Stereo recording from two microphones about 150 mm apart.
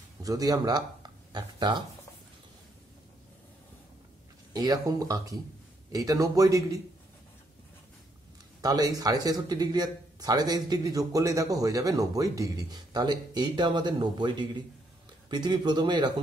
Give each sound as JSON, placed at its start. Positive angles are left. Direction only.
{"t": 0.2, "sound": "speech", "side_deg": -25}
{"t": 4.6, "sound": "speech", "side_deg": -25}
{"t": 8.5, "sound": "speech", "side_deg": -25}